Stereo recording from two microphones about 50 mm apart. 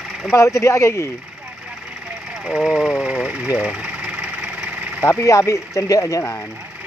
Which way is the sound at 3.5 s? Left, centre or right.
Centre.